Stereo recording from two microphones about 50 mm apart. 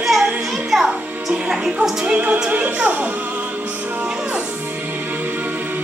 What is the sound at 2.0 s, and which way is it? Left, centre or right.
Speech, right.